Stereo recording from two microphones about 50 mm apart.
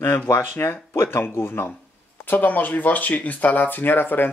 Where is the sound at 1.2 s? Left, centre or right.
Left.